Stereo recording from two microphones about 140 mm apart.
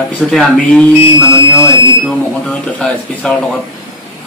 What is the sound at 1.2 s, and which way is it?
Speech, 20° left (ahead or behind).